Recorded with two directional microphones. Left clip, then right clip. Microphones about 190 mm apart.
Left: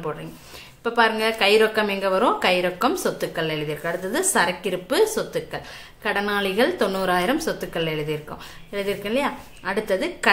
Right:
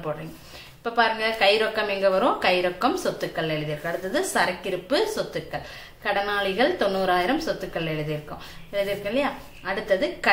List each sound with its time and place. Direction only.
0.8 s a woman's voice: 35° left (ahead or behind)